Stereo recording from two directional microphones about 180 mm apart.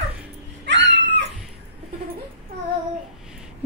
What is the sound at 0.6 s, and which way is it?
Cat, 75° right (ahead or behind).